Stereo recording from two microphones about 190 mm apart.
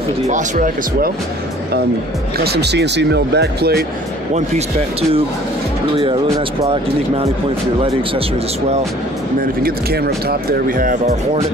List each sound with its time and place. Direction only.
0.3 s speech: 45° right (ahead or behind)
2.3 s speech: 55° right (ahead or behind)
9.6 s speech: 55° right (ahead or behind)